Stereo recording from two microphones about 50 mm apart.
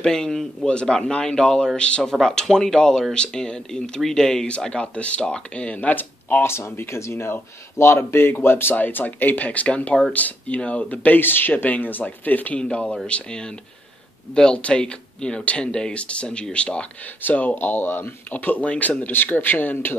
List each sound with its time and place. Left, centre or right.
0.0 s speech: centre
2.4 s speech: centre; by 6.4 s left
6.4 s speech: left
8.7 s speech: left
12.5 s speech: centre
17.2 s speech: left
18.3 s speech: left